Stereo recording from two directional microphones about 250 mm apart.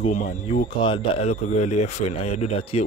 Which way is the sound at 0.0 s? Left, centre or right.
Left.